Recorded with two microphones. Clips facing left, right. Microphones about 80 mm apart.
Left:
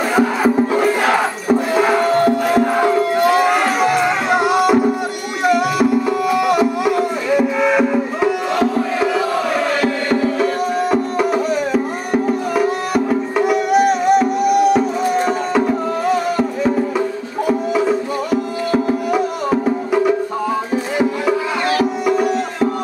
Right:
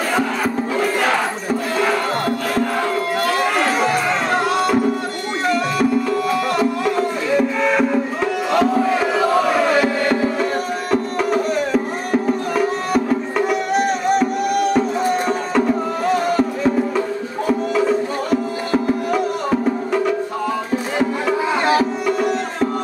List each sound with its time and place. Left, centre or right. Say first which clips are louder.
0.1 s crowd: left 7 dB; centre
5.4 s music: left 4 dB; centre
9.8 s music: even; centre
10.9 s music: right 2 dB; centre